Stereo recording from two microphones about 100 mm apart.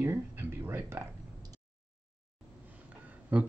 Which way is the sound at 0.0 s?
20° right (ahead or behind).